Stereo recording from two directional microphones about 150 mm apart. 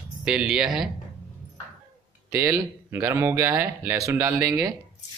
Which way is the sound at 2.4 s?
15° right (ahead or behind).